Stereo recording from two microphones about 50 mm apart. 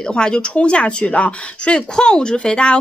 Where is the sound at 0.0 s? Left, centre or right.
Centre.